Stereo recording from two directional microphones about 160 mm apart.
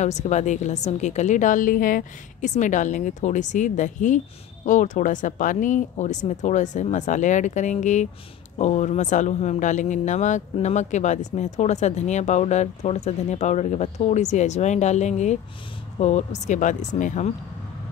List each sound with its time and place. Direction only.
0.0 s speech: 45° left (ahead or behind)